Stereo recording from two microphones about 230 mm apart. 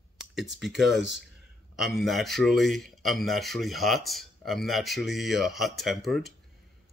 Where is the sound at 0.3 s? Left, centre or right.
Centre.